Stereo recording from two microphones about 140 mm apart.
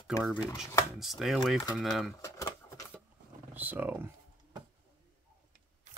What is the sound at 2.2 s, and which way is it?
Speech, 20° left (ahead or behind).